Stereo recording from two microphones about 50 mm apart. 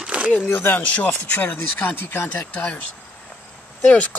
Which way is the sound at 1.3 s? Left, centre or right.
Left.